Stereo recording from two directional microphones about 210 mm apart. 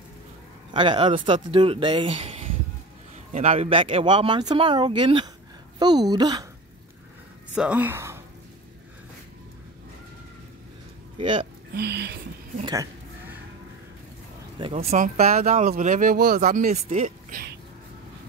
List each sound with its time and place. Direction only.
0.7 s speech: 25° right (ahead or behind)
7.5 s speech: 5° right (ahead or behind)
11.1 s speech: 25° right (ahead or behind)
11.7 s speech: 50° right (ahead or behind)
14.6 s speech: 30° right (ahead or behind)
16.7 s speech: 30° right (ahead or behind)
17.3 s a sound: 45° right (ahead or behind)